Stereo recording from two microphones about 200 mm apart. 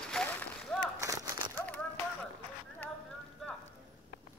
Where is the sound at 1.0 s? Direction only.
15° right (ahead or behind).